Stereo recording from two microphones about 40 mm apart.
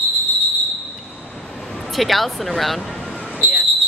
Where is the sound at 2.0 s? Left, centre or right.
Centre.